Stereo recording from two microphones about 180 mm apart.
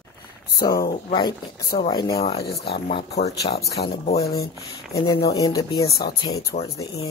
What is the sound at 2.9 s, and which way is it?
Speech, 35° left (ahead or behind).